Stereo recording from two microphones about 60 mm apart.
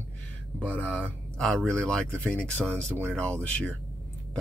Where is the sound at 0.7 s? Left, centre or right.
Right.